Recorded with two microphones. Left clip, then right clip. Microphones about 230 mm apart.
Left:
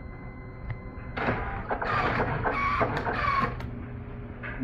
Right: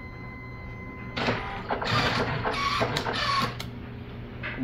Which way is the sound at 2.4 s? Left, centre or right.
Right.